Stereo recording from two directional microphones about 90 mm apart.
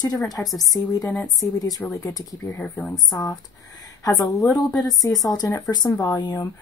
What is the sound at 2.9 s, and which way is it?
A woman's voice, 45° left (ahead or behind).